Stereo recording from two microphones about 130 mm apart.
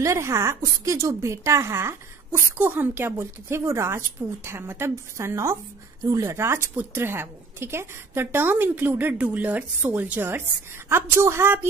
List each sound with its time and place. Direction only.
0.0 s a woman's voice: 20° right (ahead or behind)